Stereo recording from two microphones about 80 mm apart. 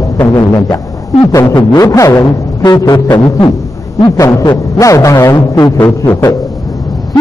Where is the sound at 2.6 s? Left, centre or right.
Left.